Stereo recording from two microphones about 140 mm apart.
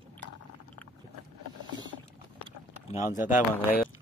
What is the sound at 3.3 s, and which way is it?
Speech, 90° left.